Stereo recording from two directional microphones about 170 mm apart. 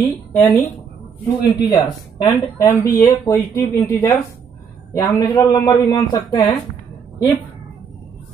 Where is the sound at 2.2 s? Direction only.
40° left (ahead or behind).